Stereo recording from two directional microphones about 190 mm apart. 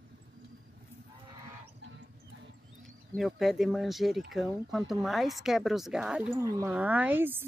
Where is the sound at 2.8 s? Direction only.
Centre (ahead or behind).